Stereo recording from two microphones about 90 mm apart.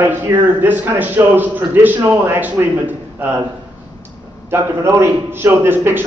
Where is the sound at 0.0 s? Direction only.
20° right (ahead or behind).